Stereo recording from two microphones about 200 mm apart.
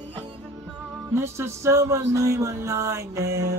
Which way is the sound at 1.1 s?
15° right (ahead or behind).